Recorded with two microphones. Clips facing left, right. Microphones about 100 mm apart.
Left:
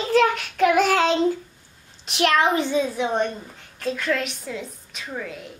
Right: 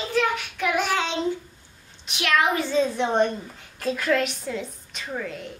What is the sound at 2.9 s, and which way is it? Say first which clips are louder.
A child's voice: right 1 dB; centre (ahead or behind).